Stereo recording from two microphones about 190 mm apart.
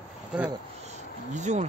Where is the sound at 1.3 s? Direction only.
40° right (ahead or behind).